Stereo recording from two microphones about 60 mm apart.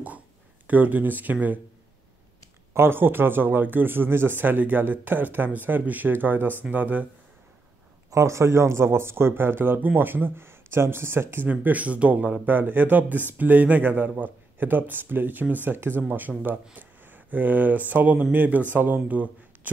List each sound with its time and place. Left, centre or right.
0.7 s a man's voice: right
2.7 s a man's voice: right
8.1 s speech: right
11.6 s a man's voice: right